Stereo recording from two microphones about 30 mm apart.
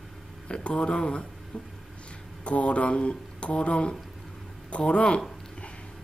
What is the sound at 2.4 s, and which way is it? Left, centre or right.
Speech, left.